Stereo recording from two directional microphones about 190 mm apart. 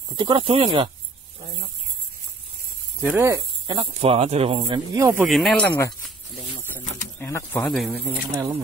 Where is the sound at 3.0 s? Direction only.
10° right (ahead or behind).